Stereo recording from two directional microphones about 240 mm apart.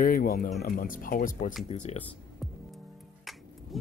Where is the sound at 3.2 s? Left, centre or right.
Centre.